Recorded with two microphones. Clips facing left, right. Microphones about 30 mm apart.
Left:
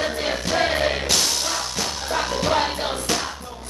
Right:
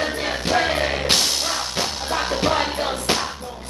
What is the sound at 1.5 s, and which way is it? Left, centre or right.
Music, right.